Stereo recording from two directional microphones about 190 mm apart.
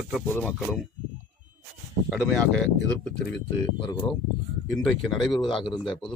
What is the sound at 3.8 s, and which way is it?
Speech, 25° left (ahead or behind).